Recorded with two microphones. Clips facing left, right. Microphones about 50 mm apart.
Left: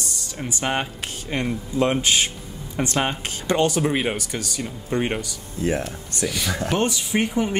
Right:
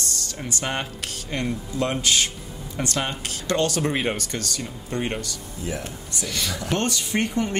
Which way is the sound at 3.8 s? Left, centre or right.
Centre.